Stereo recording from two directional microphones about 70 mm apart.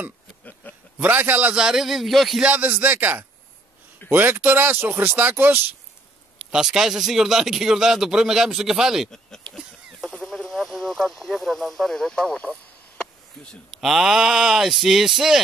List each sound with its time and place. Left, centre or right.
0.9 s speech: right
1.5 s speech: centre
2.4 s speech: right
6.5 s speech: centre
9.1 s a sound: centre
13.7 s speech: centre